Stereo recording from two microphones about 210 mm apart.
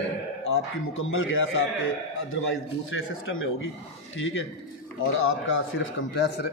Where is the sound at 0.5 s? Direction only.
75° left (ahead or behind).